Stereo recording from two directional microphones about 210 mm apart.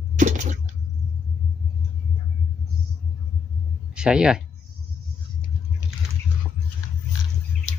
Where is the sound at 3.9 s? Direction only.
5° right (ahead or behind).